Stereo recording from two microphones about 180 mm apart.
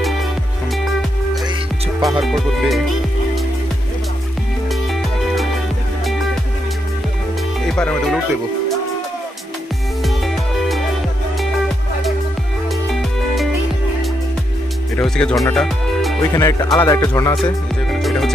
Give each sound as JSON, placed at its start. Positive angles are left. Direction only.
{"t": 2.0, "sound": "music", "side_deg": 0}
{"t": 7.6, "sound": "speech", "side_deg": 5}
{"t": 10.0, "sound": "music", "side_deg": 0}
{"t": 15.0, "sound": "speech", "side_deg": 5}
{"t": 16.3, "sound": "speech", "side_deg": 20}
{"t": 18.0, "sound": "music", "side_deg": 0}